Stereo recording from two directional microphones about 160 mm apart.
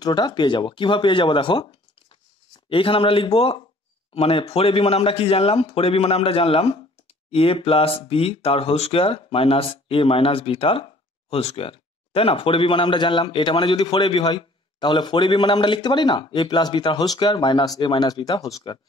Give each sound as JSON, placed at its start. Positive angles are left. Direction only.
{"t": 0.0, "sound": "speech", "side_deg": 25}